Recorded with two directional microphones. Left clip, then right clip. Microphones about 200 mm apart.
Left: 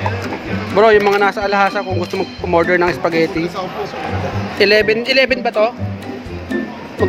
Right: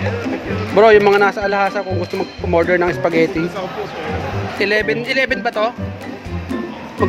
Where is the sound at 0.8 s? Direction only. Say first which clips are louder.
Right 1 dB; 10° right (ahead or behind).